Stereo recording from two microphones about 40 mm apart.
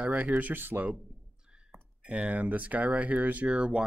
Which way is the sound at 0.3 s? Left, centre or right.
Right.